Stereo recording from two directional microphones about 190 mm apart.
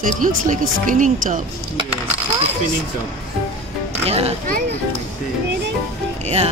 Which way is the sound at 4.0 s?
30° right (ahead or behind).